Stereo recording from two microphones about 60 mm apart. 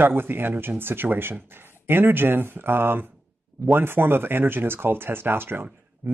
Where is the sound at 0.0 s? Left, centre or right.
Right.